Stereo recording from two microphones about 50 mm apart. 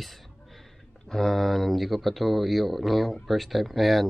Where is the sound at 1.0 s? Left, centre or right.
Centre.